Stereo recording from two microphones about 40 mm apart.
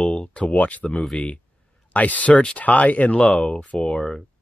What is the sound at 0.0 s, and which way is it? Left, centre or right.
Speech, left.